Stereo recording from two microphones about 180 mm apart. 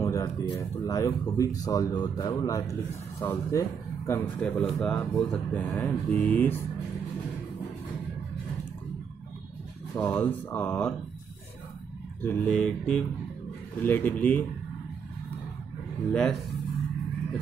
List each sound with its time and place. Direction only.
0.0 s speech: 15° left (ahead or behind)
4.4 s speech: 5° left (ahead or behind)
9.9 s speech: 10° left (ahead or behind)
12.2 s speech: 10° left (ahead or behind)
16.1 s speech: 5° left (ahead or behind)